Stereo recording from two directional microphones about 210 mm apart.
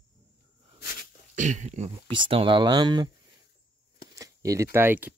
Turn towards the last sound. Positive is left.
turn(degrees=-10)  # may be behind; listen again after turning